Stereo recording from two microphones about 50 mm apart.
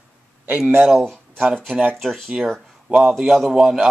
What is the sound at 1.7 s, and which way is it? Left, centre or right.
Speech, right.